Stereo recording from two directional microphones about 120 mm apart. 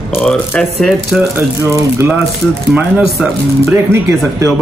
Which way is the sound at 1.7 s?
25° right (ahead or behind).